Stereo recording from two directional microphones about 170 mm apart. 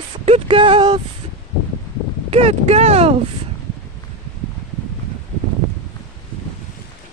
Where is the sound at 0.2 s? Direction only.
35° right (ahead or behind).